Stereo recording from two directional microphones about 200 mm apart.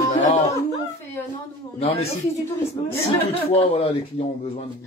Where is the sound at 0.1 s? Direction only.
35° left (ahead or behind).